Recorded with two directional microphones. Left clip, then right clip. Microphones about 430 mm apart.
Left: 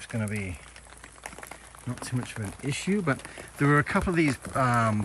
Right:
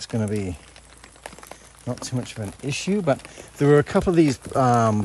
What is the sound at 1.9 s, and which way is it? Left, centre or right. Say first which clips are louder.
Speech: right 5 dB; centre.